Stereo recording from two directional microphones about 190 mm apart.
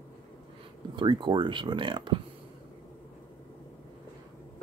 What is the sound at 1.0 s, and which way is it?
Speech, 25° right (ahead or behind).